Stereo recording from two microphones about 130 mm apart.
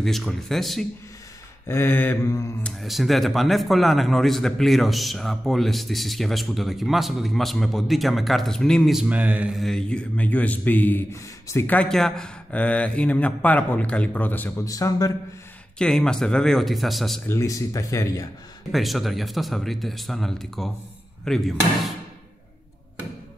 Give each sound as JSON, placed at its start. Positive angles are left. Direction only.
{"t": 0.0, "sound": "speech", "side_deg": 0}
{"t": 1.7, "sound": "speech", "side_deg": 20}
{"t": 2.6, "sound": "speech", "side_deg": 0}
{"t": 9.6, "sound": "speech", "side_deg": 5}
{"t": 14.7, "sound": "speech", "side_deg": 25}
{"t": 15.8, "sound": "speech", "side_deg": 5}
{"t": 17.3, "sound": "speech", "side_deg": 25}
{"t": 18.7, "sound": "speech", "side_deg": 0}